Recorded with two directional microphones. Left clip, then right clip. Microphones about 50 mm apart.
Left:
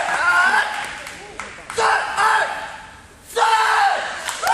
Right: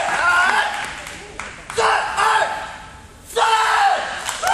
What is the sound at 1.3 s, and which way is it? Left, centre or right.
Clapping, centre.